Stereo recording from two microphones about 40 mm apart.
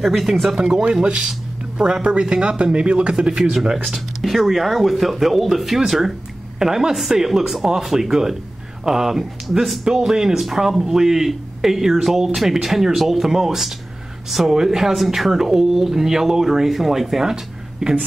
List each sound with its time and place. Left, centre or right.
0.0 s speech: centre
1.0 s speech: right
3.8 s speech: centre